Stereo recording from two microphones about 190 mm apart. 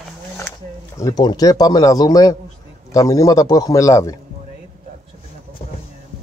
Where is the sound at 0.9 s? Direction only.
20° left (ahead or behind).